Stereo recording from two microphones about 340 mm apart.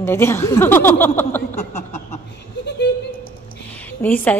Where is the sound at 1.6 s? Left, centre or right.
Centre.